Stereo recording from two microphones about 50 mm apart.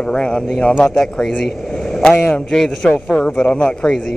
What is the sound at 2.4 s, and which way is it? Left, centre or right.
Speech, centre.